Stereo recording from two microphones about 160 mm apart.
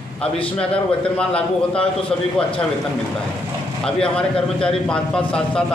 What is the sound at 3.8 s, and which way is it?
Speech, 5° left (ahead or behind).